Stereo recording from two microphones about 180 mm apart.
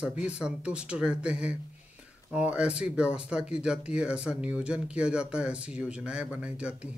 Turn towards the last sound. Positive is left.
turn(degrees=-5)  # may be behind; listen again after turning